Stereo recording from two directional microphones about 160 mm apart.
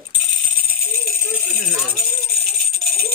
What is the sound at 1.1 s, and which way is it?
Rattle, 65° right (ahead or behind).